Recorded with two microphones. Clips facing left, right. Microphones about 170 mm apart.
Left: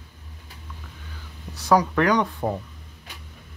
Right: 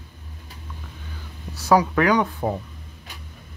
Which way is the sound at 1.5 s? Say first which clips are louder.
Right 1 dB; 5° right (ahead or behind).